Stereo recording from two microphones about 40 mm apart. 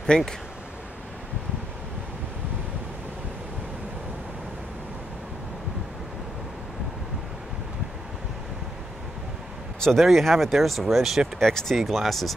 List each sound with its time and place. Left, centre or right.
0.0 s speech: centre
9.9 s speech: centre
11.3 s speech: centre
11.8 s speech: centre